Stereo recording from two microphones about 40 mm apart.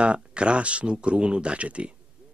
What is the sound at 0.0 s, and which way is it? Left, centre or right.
Speech, right.